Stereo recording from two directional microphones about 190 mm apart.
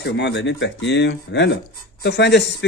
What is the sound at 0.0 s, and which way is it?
Speech, 70° left (ahead or behind).